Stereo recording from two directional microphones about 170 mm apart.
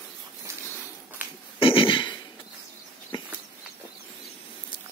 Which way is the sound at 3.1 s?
25° left (ahead or behind).